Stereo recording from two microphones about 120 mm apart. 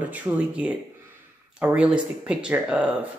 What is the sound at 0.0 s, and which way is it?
Speech, 15° right (ahead or behind).